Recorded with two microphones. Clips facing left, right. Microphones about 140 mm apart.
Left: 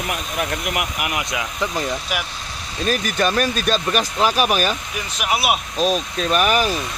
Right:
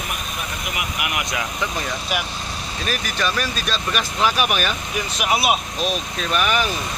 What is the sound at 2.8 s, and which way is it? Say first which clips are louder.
Speech: left 5 dB; 45° left (ahead or behind).